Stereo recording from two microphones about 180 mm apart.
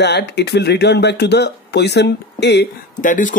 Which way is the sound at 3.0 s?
45° left (ahead or behind).